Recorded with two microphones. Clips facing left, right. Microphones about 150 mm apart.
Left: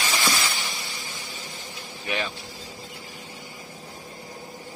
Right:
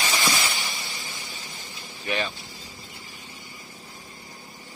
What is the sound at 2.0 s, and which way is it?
Speech, 10° left (ahead or behind).